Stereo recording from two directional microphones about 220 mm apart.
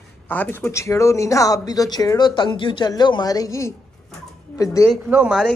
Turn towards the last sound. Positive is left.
turn(degrees=-5)  # may be behind; listen again after turning